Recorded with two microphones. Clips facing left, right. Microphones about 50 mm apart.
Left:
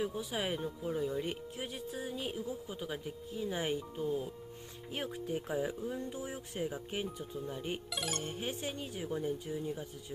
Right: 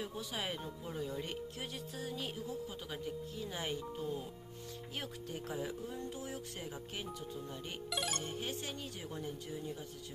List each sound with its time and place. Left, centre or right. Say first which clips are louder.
0.1 s speech: left 4 dB; centre
7.9 s speech: right 4 dB; centre
8.4 s speech: left 3 dB; centre